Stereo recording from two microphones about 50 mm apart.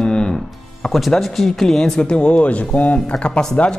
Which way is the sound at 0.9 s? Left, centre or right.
Centre.